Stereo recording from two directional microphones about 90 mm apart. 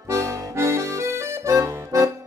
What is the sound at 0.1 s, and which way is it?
Accordion, 35° right (ahead or behind).